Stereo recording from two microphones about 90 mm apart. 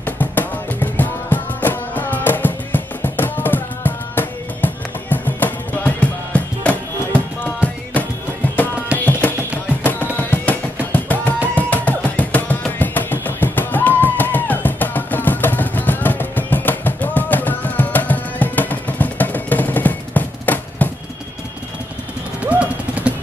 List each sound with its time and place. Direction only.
0.0 s music: 20° left (ahead or behind)
8.9 s music: 20° left (ahead or behind)
22.4 s a sound: 15° right (ahead or behind)